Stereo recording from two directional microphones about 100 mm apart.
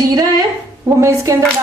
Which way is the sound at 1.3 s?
30° right (ahead or behind).